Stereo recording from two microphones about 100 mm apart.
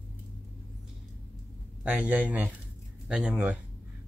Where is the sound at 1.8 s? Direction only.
15° right (ahead or behind).